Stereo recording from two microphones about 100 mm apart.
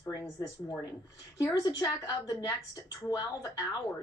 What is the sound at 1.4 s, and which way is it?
A woman's voice, 40° left (ahead or behind).